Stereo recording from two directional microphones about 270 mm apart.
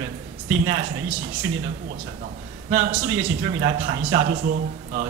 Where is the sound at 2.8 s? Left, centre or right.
Right.